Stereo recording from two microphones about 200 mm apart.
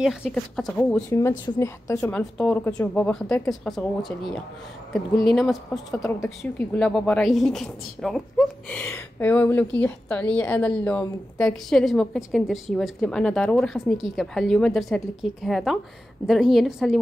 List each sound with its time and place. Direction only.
0.2 s a woman's voice: 5° left (ahead or behind)
1.4 s a woman's voice: 15° left (ahead or behind)
5.9 s a woman's voice: 15° left (ahead or behind)